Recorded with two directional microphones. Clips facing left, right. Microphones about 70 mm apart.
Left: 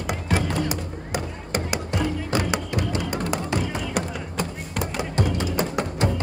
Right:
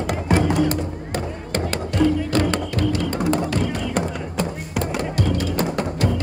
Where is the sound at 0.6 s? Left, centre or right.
Centre.